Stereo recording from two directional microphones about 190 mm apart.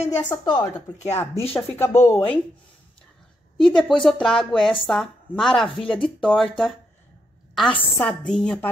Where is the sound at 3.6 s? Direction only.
5° left (ahead or behind).